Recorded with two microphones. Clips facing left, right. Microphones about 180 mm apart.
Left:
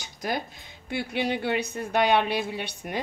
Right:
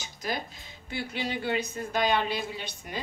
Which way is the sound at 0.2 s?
55° left (ahead or behind).